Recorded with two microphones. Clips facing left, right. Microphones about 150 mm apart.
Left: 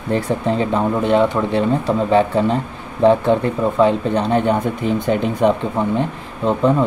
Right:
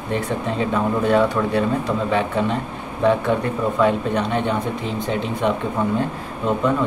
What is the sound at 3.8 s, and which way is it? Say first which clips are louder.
Speech: left 3 dB; 30° left (ahead or behind).